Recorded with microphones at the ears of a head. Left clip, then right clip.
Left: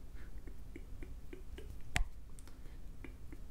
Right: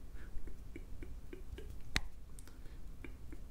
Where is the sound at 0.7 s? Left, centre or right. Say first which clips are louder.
Right 1 dB; centre.